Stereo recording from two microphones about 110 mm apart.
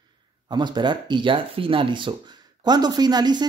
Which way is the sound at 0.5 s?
45° right (ahead or behind).